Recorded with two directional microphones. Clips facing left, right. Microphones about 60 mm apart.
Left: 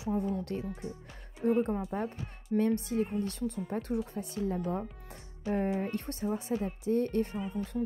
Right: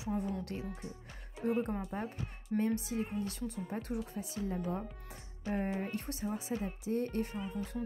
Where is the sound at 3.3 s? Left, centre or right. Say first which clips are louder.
Left 5 dB; left.